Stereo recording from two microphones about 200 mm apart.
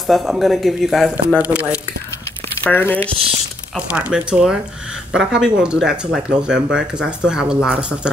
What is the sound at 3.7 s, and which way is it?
Speech, 5° right (ahead or behind).